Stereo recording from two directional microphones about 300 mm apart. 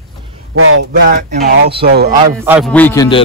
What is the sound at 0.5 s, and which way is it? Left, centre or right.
Speech, right.